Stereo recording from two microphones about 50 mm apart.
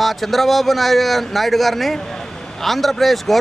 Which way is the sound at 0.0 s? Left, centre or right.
Centre.